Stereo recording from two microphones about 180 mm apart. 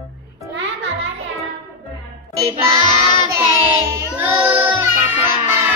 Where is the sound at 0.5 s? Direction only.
90° right.